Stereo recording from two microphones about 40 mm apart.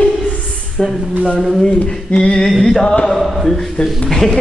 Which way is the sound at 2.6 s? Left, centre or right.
Centre.